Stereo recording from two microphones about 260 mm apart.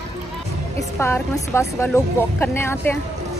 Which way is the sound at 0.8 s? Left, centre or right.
Centre.